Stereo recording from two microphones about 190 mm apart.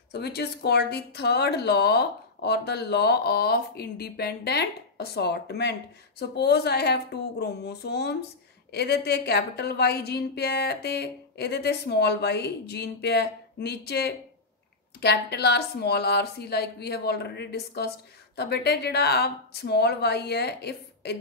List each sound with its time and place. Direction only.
0.1 s speech: 60° left (ahead or behind)